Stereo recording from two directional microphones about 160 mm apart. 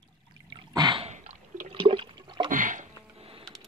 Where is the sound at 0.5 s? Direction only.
25° right (ahead or behind).